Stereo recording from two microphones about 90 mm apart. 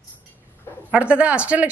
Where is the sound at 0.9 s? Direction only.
15° right (ahead or behind).